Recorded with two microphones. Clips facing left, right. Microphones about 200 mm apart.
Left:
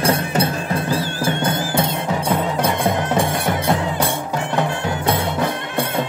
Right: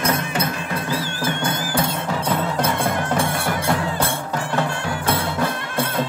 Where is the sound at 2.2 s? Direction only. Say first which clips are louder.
Left 2 dB; 15° left (ahead or behind).